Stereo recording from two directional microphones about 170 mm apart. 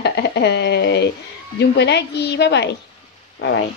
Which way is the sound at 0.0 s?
80° left.